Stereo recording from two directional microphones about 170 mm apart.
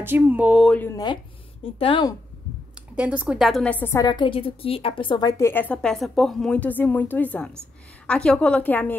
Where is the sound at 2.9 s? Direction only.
10° right (ahead or behind).